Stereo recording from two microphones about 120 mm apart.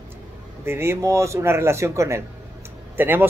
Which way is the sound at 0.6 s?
20° right (ahead or behind).